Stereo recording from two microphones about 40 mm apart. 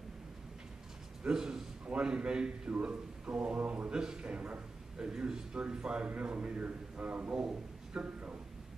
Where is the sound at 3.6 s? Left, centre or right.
Right.